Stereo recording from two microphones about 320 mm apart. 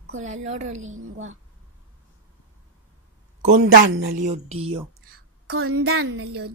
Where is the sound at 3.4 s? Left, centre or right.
Right.